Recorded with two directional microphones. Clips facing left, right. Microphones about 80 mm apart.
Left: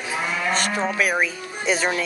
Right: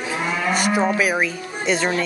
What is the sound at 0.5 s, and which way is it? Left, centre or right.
Speech, centre.